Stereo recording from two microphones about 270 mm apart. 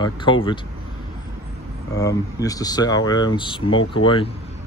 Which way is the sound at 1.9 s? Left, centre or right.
Centre.